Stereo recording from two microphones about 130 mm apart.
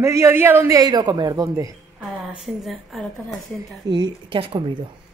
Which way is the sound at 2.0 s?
Centre (ahead or behind).